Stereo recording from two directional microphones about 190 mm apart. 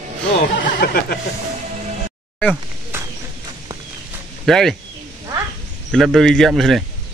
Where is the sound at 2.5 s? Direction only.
10° right (ahead or behind).